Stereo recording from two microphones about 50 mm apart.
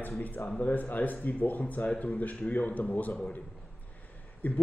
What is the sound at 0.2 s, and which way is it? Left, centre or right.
Speech, left.